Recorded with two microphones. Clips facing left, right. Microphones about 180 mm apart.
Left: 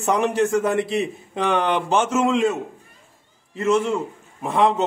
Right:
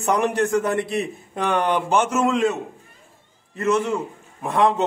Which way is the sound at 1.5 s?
Centre (ahead or behind).